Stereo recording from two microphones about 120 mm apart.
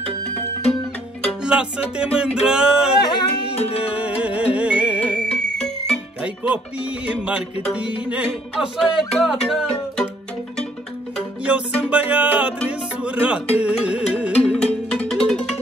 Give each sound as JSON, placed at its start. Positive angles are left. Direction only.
{"t": 1.4, "sound": "speech", "side_deg": -10}
{"t": 3.0, "sound": "music", "side_deg": 40}
{"t": 3.8, "sound": "music", "side_deg": -10}
{"t": 5.0, "sound": "music", "side_deg": 10}
{"t": 6.2, "sound": "speech", "side_deg": -10}
{"t": 7.7, "sound": "music", "side_deg": -10}
{"t": 11.5, "sound": "speech", "side_deg": -10}
{"t": 14.5, "sound": "music", "side_deg": 10}